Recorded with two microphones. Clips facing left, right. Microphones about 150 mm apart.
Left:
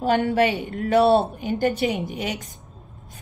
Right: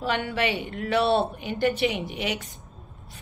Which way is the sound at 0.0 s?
45° left (ahead or behind).